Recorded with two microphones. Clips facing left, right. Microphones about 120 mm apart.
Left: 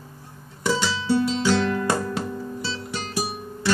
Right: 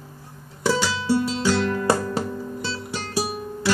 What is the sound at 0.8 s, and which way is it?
Music, 5° right (ahead or behind).